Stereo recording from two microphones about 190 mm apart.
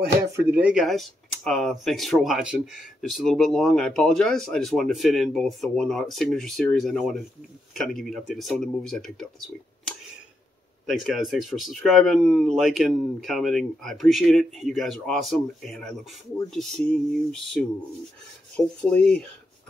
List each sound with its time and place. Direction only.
0.4 s speech: 10° right (ahead or behind)
10.9 s speech: centre (ahead or behind)
18.8 s speech: 5° left (ahead or behind)